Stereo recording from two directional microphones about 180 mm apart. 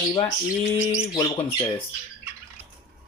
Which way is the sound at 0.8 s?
5° right (ahead or behind).